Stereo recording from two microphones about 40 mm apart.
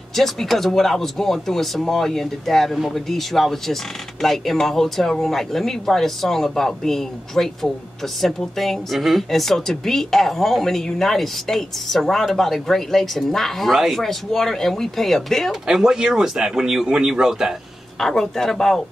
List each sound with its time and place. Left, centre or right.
0.1 s a woman's voice: centre
15.7 s speech: centre
18.0 s a woman's voice: centre